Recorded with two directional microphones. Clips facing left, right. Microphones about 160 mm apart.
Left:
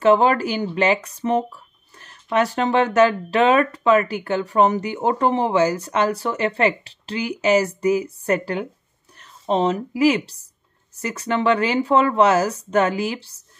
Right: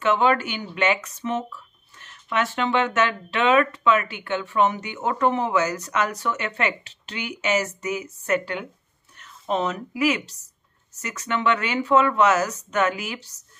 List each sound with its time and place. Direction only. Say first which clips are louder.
0.0 s a woman's voice: left 5 dB; 35° left (ahead or behind)